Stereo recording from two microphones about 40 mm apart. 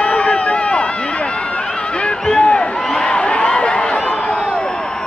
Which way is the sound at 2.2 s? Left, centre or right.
Left.